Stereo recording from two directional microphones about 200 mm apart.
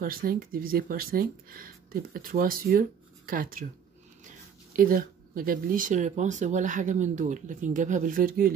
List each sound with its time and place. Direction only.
0.0 s speech: 45° right (ahead or behind)
4.7 s speech: 45° right (ahead or behind)